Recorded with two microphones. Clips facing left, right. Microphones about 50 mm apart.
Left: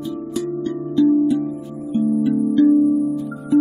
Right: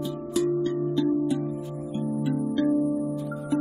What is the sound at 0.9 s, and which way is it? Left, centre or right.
Music, centre.